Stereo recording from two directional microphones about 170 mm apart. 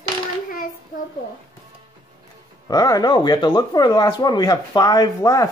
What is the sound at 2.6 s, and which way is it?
Speech, 20° left (ahead or behind).